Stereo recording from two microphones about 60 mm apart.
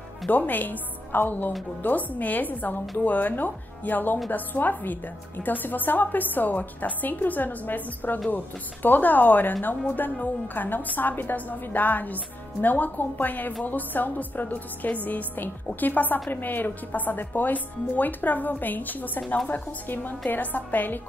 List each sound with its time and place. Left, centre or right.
0.3 s a woman's voice: left